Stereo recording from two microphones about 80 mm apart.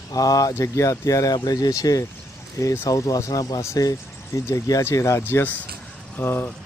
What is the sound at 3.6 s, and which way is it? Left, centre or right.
Speech, left.